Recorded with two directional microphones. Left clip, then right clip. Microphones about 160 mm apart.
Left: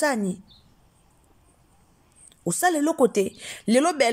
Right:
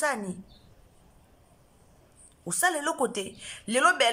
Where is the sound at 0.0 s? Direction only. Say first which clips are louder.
Left 5 dB; 30° left (ahead or behind).